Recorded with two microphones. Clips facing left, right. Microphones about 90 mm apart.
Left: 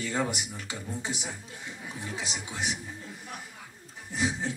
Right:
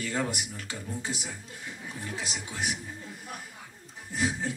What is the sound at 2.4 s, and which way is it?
Speech, 15° left (ahead or behind).